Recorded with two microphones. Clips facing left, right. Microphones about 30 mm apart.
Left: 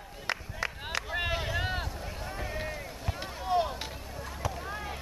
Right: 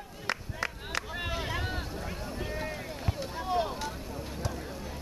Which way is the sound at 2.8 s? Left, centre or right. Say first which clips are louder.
Right 2 dB; centre.